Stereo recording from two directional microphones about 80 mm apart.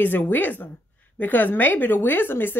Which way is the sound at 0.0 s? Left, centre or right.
Left.